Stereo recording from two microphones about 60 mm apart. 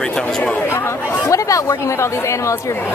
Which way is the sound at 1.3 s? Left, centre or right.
Left.